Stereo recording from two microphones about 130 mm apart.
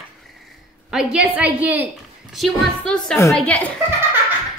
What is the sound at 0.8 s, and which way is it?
A woman's voice, 5° right (ahead or behind).